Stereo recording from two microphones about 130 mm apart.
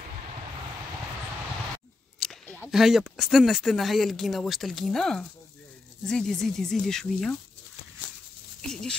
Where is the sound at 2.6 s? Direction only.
5° right (ahead or behind).